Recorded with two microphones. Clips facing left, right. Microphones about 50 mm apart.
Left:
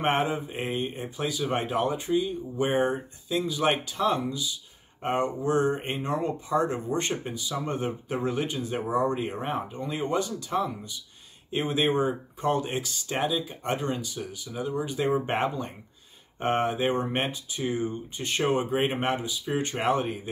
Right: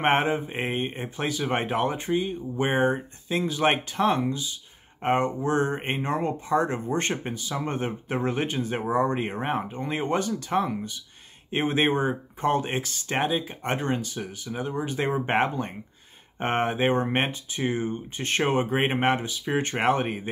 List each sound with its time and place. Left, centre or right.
0.0 s speech: right